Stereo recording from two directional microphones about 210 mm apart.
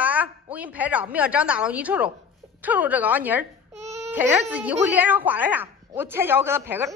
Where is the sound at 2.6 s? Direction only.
10° right (ahead or behind).